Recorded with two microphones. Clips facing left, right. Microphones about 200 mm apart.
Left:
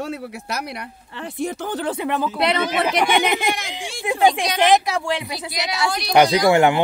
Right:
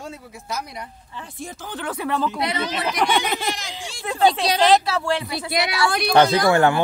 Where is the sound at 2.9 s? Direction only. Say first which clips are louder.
Even; 10° left (ahead or behind).